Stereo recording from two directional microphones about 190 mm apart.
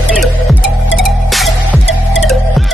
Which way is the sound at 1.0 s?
Centre (ahead or behind).